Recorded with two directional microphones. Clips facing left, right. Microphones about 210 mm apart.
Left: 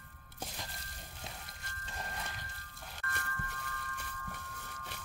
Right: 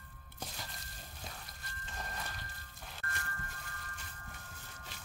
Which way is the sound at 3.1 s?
60° left (ahead or behind).